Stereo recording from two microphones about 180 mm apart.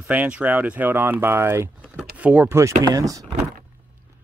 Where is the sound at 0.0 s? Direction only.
10° right (ahead or behind).